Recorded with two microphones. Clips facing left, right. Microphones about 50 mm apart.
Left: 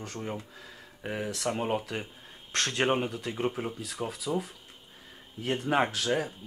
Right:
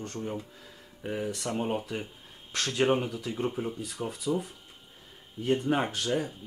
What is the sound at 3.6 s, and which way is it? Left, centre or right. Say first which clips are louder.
Speech: right 1 dB; left.